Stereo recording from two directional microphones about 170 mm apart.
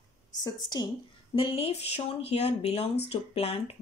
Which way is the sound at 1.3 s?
35° left (ahead or behind).